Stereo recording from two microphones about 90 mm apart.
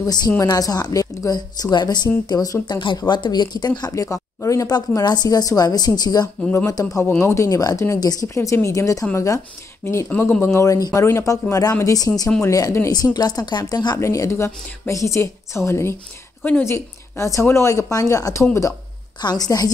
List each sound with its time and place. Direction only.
0.0 s speech: 50° left (ahead or behind)
3.9 s speech: 35° left (ahead or behind)
10.4 s speech: 35° left (ahead or behind); by 13.9 s 50° left (ahead or behind)
13.9 s speech: 35° left (ahead or behind)
19.2 s speech: 45° left (ahead or behind)